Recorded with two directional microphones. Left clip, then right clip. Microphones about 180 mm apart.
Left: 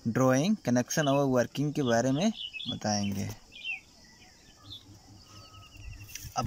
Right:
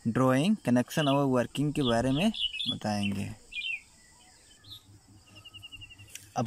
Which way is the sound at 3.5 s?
60° right (ahead or behind).